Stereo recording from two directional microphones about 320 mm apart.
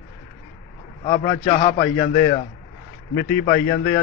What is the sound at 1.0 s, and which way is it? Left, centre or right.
A man's voice, left.